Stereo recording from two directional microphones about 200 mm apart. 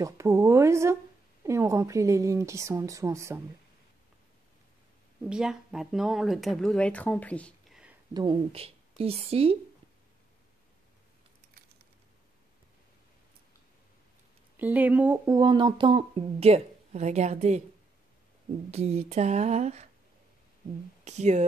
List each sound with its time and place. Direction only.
0.0 s speech: 15° right (ahead or behind)
5.2 s speech: 5° right (ahead or behind)
8.1 s speech: 25° right (ahead or behind)
14.6 s speech: 10° right (ahead or behind); by 17.6 s 35° right (ahead or behind)
18.7 s a sound: 30° right (ahead or behind)
21.0 s speech: 35° right (ahead or behind)